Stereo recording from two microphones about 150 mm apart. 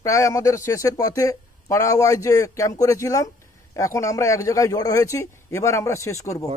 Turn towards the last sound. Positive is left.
turn(degrees=20)  # may be behind; listen again after turning